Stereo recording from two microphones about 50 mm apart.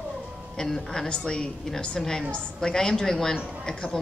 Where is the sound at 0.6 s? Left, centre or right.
Centre.